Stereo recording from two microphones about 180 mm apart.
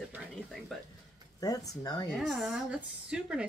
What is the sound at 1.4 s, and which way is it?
Speech, 20° left (ahead or behind).